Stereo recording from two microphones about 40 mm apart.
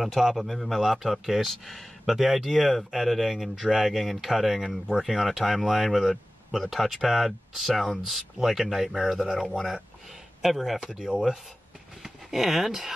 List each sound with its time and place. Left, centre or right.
0.0 s a man's voice: centre
10.4 s a man's voice: centre
10.9 s speech: centre
12.0 s speech: centre